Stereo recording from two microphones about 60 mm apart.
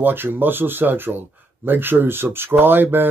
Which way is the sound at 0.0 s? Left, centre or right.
Right.